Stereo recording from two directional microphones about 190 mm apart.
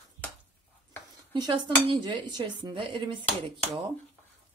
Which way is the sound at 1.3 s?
25° right (ahead or behind).